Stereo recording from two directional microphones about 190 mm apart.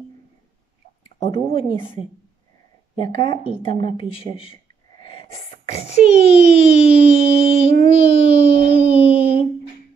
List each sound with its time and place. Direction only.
1.5 s a child's voice: 30° left (ahead or behind)
3.0 s speech: 25° left (ahead or behind)
5.9 s a child's voice: 35° left (ahead or behind)
7.9 s a sound: 35° left (ahead or behind)